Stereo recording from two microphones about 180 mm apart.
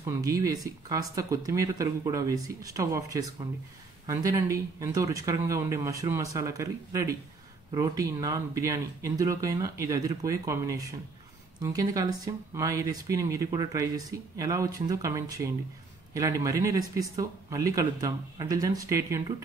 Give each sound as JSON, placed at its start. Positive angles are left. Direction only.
{"t": 0.0, "sound": "speech", "side_deg": -20}